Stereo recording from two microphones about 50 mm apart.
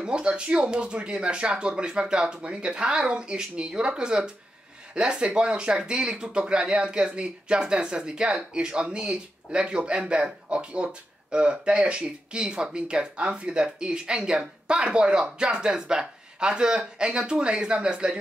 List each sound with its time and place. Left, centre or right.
0.0 s speech: centre